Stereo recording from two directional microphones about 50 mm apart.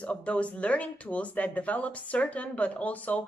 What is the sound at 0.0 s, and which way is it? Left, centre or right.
Speech, left.